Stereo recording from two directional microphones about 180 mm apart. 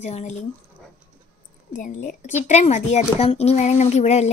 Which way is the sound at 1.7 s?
45° left (ahead or behind).